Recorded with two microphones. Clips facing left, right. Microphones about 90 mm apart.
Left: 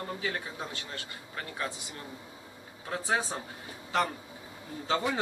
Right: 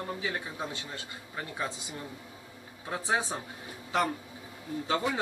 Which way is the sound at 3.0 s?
15° right (ahead or behind).